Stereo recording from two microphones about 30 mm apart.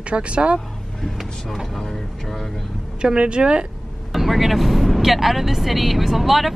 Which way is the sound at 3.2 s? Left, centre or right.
Right.